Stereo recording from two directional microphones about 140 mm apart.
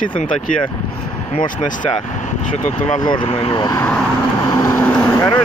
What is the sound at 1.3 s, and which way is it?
Speech, 35° left (ahead or behind).